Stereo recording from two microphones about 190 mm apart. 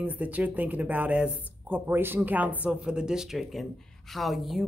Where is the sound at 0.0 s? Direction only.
10° right (ahead or behind).